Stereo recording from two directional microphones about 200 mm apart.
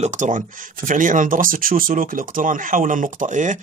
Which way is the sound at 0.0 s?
40° right (ahead or behind).